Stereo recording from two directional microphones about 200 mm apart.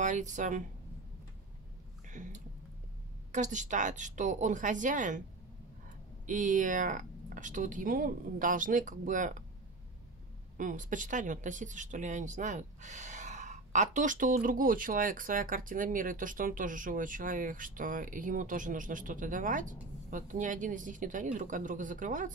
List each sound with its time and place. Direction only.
0.0 s speech: 40° right (ahead or behind)
2.0 s a sound: 40° right (ahead or behind)
3.3 s speech: 40° right (ahead or behind)
6.2 s speech: 40° right (ahead or behind)
10.6 s speech: 40° right (ahead or behind)